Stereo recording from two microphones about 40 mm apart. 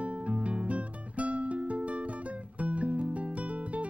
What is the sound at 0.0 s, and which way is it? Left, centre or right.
Music, right.